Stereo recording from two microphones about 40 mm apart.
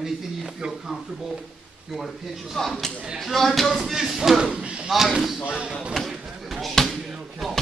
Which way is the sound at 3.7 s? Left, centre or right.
Centre.